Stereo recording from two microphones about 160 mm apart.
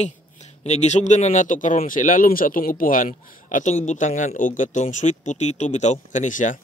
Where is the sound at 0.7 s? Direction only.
45° left (ahead or behind).